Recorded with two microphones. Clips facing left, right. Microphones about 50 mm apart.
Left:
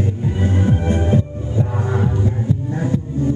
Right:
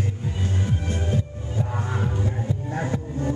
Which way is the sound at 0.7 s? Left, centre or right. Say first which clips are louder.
Left 9 dB; left.